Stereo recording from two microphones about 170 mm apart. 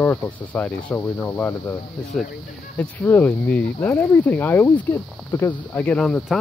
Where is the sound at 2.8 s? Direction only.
10° left (ahead or behind).